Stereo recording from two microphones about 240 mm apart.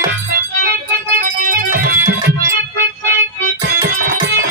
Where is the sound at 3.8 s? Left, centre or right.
Right.